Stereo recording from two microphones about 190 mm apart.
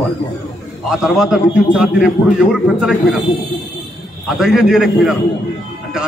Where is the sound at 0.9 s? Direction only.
Centre (ahead or behind).